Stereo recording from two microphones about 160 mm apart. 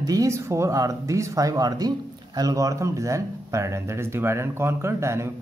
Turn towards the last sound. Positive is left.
turn(degrees=-15)  # may be behind; listen again after turning